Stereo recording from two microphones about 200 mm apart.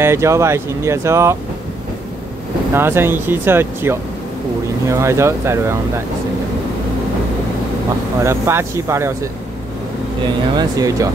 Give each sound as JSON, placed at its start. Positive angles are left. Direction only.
{"t": 0.0, "sound": "speech", "side_deg": -15}
{"t": 2.7, "sound": "speech", "side_deg": -10}
{"t": 8.2, "sound": "speech", "side_deg": -15}
{"t": 10.5, "sound": "speech", "side_deg": -15}